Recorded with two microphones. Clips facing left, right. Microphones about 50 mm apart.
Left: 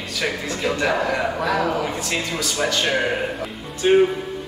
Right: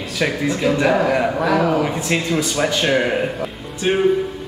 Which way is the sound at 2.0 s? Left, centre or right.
Right.